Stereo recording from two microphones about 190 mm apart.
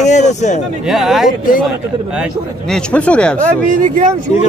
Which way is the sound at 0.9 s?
Centre (ahead or behind).